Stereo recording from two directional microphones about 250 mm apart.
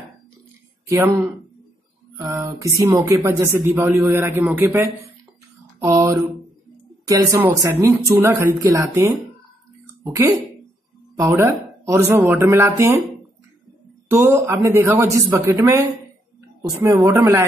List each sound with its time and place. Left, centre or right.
0.8 s speech: centre
5.8 s mantra: centre
7.1 s speech: centre
14.0 s speech: centre